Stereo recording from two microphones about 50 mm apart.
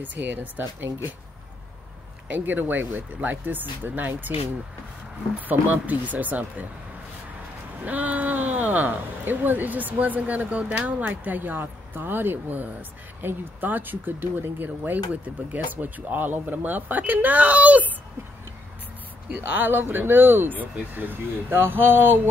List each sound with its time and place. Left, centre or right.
0.0 s speech: right
2.2 s speech: right
5.5 s speech: right
7.8 s speech: right
14.8 s speech: right
19.4 s speech: right
21.5 s speech: right